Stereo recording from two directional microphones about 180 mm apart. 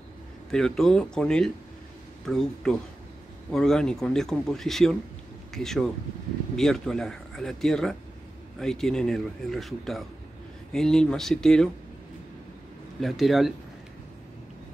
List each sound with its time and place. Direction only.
0.5 s a man's voice: 5° left (ahead or behind)
13.0 s a man's voice: centre (ahead or behind)